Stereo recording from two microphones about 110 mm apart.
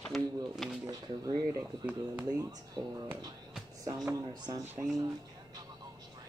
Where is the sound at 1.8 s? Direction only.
15° right (ahead or behind).